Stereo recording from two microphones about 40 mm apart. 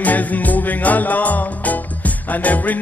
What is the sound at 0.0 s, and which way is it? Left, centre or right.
Music, left.